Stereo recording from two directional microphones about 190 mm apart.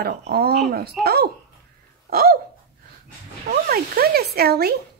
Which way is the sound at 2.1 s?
50° right (ahead or behind).